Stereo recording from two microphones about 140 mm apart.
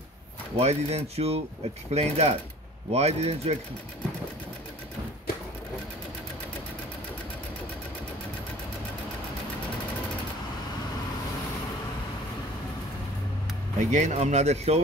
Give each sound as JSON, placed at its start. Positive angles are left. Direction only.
{"t": 0.6, "sound": "speech", "side_deg": -50}
{"t": 13.7, "sound": "speech", "side_deg": -55}